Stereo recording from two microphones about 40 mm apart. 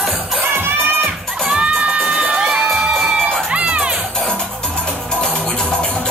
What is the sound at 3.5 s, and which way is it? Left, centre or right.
Music, right.